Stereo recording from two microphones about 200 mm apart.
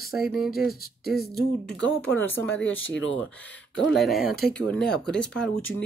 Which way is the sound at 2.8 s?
70° left (ahead or behind).